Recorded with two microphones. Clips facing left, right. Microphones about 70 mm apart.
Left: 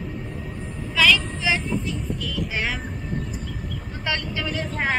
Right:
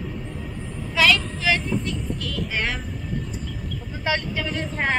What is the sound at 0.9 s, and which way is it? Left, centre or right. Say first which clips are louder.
Child singing: even; centre.